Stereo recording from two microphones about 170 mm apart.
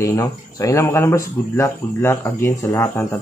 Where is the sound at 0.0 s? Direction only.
20° left (ahead or behind).